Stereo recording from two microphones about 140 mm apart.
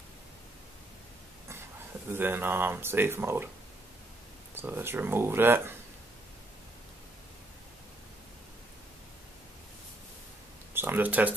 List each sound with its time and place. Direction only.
2.1 s speech: 15° right (ahead or behind)
4.6 s speech: 15° right (ahead or behind)
10.7 s speech: 15° right (ahead or behind)